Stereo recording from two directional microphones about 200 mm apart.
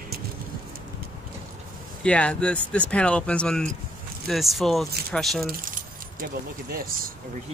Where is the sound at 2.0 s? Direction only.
5° left (ahead or behind).